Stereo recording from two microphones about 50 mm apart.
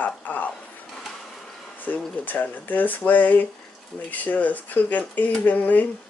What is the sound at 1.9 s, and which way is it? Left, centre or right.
Speech, left.